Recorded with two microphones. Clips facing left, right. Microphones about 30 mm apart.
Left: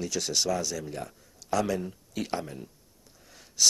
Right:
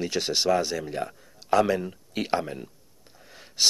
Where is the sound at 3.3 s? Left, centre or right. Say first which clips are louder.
Right 1 dB; right.